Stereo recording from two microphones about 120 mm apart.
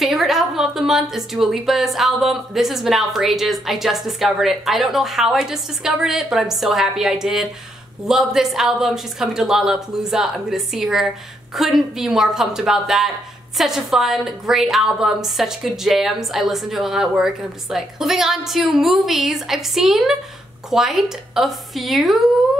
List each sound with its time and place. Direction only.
0.0 s a woman's voice: centre (ahead or behind)